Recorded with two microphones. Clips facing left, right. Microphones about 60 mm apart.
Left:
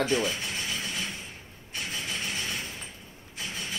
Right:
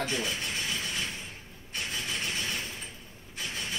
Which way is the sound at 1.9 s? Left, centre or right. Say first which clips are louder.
Even; centre.